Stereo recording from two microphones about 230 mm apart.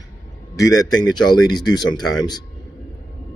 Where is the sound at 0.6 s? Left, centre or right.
Centre.